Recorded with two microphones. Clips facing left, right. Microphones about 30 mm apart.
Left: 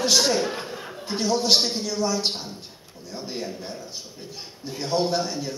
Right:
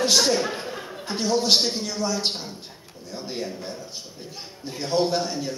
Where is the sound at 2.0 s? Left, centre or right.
Centre.